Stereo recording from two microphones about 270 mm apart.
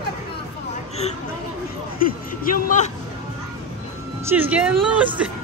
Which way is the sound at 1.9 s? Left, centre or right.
Left.